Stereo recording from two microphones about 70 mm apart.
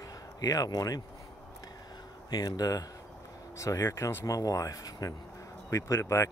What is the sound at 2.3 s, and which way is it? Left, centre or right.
Speech, left.